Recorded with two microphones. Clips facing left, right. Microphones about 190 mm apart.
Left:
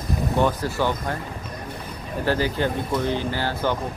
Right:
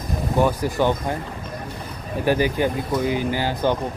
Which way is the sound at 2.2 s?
15° right (ahead or behind).